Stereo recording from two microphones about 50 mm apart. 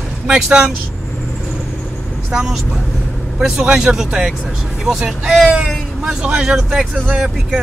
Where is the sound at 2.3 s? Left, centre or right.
Centre.